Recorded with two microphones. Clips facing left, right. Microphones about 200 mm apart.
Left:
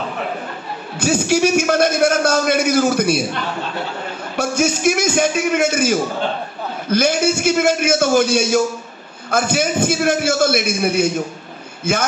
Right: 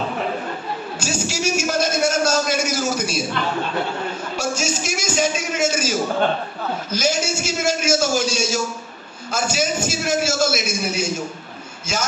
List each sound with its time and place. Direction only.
0.9 s a man's voice: 60° left (ahead or behind)
4.4 s a man's voice: 55° left (ahead or behind)